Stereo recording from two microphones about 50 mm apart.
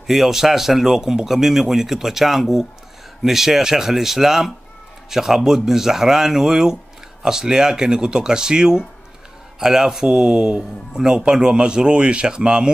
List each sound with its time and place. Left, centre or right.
0.0 s a man's voice: centre